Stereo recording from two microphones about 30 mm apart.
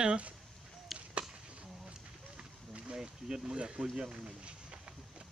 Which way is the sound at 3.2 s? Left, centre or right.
Right.